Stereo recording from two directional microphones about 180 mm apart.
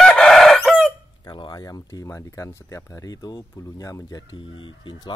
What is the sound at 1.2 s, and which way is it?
Speech, 25° left (ahead or behind).